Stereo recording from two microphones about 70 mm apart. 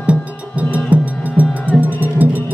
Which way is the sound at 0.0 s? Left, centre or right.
Centre.